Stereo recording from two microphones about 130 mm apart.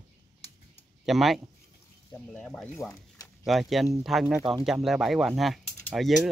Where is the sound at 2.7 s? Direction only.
20° left (ahead or behind).